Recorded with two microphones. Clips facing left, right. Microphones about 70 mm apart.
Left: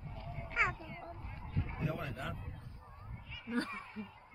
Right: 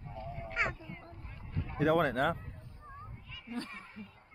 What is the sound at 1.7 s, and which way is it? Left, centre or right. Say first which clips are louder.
Speech: right 15 dB; right.